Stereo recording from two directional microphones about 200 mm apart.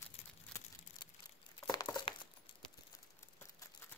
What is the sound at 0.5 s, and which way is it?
Crushing, 5° left (ahead or behind).